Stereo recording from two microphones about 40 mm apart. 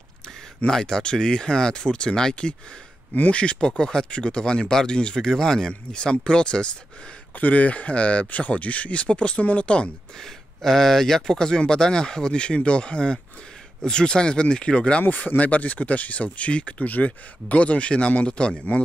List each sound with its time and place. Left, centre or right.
0.7 s speech: centre
7.3 s speech: left
10.1 s speech: centre; by 15.0 s left
15.0 s speech: left
16.8 s speech: left